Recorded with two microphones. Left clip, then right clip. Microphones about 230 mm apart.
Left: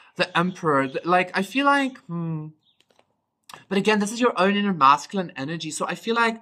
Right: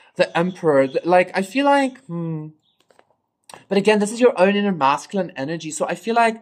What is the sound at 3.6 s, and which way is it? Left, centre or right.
Speech, centre.